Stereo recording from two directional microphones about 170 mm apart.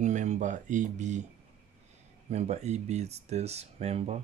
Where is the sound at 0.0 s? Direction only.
45° right (ahead or behind).